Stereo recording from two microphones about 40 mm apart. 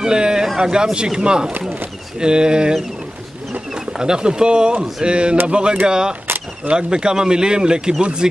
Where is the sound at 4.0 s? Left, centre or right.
Centre.